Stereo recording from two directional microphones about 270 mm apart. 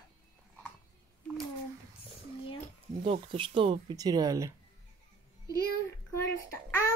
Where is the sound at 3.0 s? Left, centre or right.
Centre.